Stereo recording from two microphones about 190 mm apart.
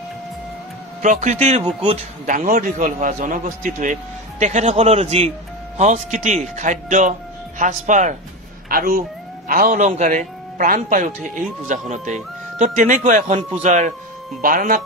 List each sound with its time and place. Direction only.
1.0 s a man's voice: 40° right (ahead or behind)